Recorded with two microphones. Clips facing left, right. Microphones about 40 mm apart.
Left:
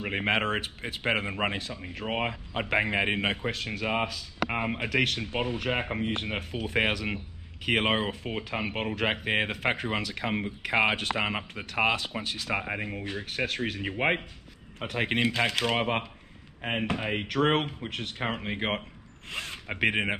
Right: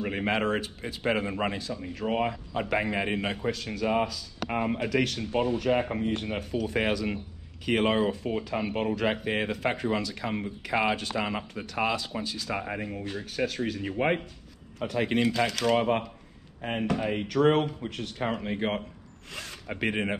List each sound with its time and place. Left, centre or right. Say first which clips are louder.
0.0 s a man's voice: even; left
0.6 s a man's voice: even; left
12.4 s a man's voice: left 1 dB; left
13.2 s a man's voice: right 1 dB; left
17.8 s speech: even; left
18.2 s a man's voice: right 2 dB; left